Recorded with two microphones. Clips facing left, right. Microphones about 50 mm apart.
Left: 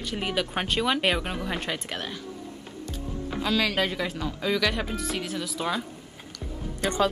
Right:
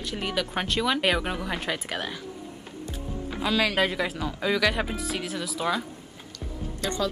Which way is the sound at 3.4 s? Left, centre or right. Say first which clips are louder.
Right 1 dB; centre.